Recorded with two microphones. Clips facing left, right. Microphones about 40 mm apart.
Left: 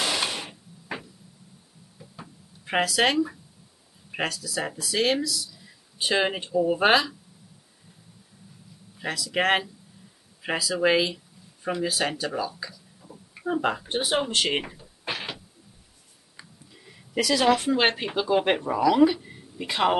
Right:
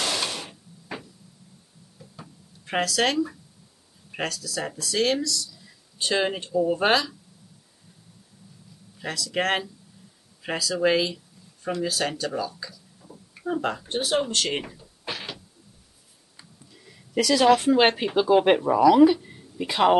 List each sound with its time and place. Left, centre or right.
0.0 s a sound: centre
4.1 s speech: centre
8.9 s speech: centre
16.7 s speech: centre